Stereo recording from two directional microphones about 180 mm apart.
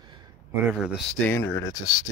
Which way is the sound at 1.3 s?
15° left (ahead or behind).